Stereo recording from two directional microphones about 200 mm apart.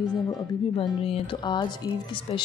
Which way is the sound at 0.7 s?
30° left (ahead or behind).